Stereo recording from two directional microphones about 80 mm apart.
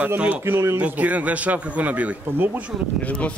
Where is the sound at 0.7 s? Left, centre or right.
Centre.